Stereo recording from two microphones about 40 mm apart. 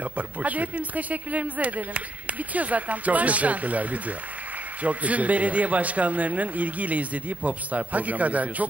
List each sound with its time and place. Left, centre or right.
0.0 s speech: right